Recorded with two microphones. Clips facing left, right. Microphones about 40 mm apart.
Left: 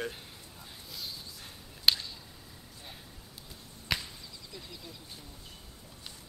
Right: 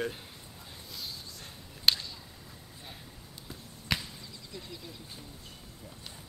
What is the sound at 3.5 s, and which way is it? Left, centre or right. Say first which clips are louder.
Arrow: right 1 dB; centre.